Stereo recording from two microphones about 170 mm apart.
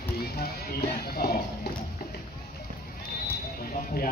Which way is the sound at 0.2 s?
65° left (ahead or behind).